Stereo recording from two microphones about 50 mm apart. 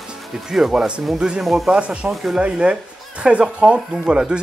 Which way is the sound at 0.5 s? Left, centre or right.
Centre.